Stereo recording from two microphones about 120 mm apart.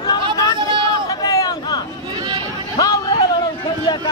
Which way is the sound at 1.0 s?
30° left (ahead or behind).